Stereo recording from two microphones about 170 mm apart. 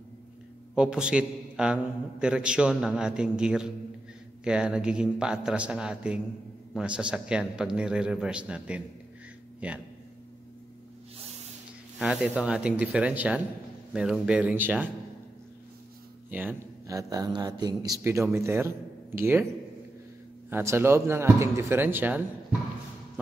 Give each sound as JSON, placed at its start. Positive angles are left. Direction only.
{"t": 0.7, "sound": "a man's voice", "side_deg": -5}
{"t": 11.1, "sound": "snort", "side_deg": -35}
{"t": 12.0, "sound": "speech", "side_deg": -5}
{"t": 16.3, "sound": "speech", "side_deg": -10}